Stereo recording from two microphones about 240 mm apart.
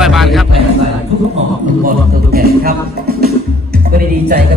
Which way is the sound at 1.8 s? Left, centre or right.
Right.